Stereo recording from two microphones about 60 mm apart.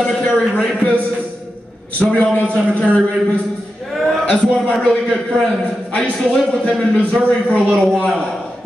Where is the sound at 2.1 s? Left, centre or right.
Left.